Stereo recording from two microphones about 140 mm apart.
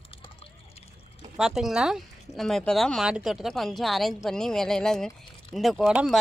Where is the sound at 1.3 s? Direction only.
5° right (ahead or behind).